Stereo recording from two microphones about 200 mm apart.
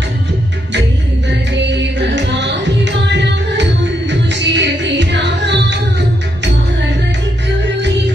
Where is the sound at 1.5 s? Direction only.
60° right (ahead or behind).